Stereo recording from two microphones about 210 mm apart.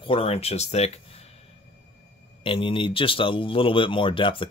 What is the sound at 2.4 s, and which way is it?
A man's voice, 25° left (ahead or behind).